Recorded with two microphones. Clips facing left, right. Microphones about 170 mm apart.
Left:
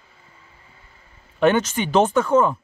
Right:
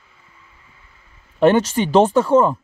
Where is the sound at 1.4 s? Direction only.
35° right (ahead or behind).